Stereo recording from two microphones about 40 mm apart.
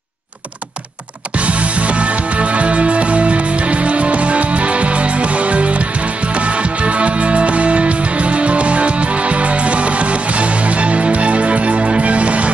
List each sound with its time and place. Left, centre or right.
1.3 s music: right